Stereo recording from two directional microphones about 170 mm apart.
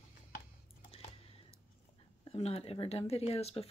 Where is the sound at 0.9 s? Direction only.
35° left (ahead or behind).